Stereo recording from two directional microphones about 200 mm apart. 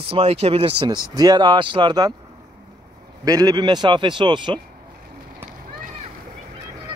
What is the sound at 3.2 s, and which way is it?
Speech, 20° right (ahead or behind).